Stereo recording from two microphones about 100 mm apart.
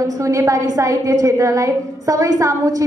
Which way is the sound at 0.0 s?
35° right (ahead or behind).